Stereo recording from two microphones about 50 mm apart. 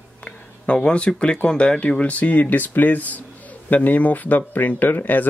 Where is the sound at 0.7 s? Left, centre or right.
Centre.